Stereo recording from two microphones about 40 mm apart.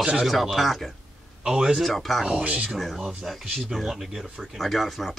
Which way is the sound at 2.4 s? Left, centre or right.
Right.